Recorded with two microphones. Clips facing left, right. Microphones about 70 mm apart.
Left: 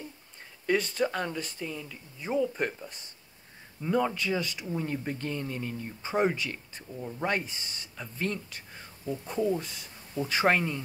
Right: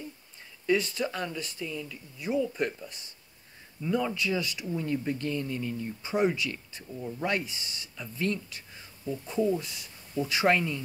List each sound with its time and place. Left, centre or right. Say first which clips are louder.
0.7 s speech: even; left
8.5 s a sound: left 1 dB; left
9.3 s speech: right 1 dB; left